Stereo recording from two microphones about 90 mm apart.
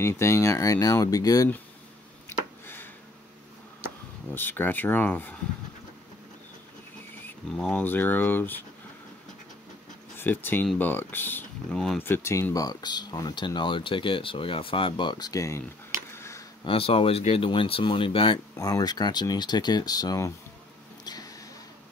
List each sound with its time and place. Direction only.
0.0 s speech: 30° left (ahead or behind)
2.2 s a sound: 25° left (ahead or behind)
4.3 s speech: 25° left (ahead or behind)
7.4 s speech: 5° left (ahead or behind)
7.8 s speech: 20° left (ahead or behind)
10.1 s speech: 25° left (ahead or behind)
11.7 s speech: 5° left (ahead or behind)
12.0 s speech: 25° left (ahead or behind)
12.5 s speech: 50° left (ahead or behind)
16.1 s a sound: 30° left (ahead or behind)
16.6 s speech: 90° left
18.6 s speech: 40° left (ahead or behind)
21.0 s a sound: 50° left (ahead or behind)